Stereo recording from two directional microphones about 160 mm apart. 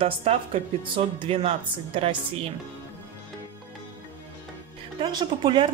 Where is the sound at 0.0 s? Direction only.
40° right (ahead or behind).